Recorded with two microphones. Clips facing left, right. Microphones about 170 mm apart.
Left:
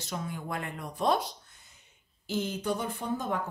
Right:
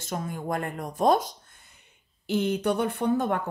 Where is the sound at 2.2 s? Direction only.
65° right (ahead or behind).